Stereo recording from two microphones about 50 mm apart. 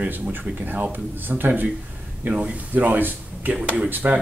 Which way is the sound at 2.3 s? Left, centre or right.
Right.